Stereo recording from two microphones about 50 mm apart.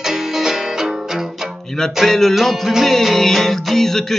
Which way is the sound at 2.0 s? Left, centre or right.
Centre.